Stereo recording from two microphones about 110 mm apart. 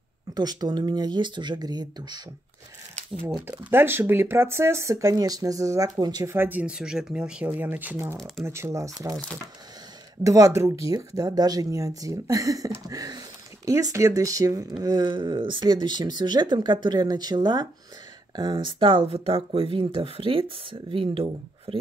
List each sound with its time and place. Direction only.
0.3 s speech: 35° right (ahead or behind)
3.4 s speech: 20° right (ahead or behind); by 6.2 s 40° right (ahead or behind)
6.2 s speech: 20° right (ahead or behind)
6.6 s speech: 5° right (ahead or behind); by 9.2 s 30° right (ahead or behind)
10.2 s speech: 30° right (ahead or behind); by 21.7 s 55° right (ahead or behind)